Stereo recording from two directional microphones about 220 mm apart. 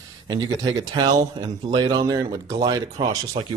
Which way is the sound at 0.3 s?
20° right (ahead or behind).